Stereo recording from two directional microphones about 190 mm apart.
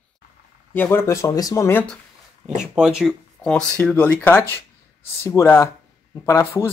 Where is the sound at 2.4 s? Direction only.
5° right (ahead or behind).